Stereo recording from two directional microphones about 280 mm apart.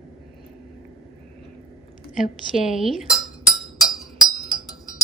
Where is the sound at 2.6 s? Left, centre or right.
Centre.